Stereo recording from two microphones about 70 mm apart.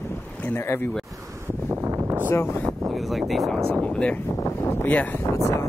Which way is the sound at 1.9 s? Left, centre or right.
Right.